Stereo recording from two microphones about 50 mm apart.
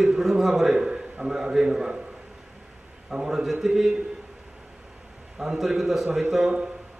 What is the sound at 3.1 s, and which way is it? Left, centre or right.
Speech, centre.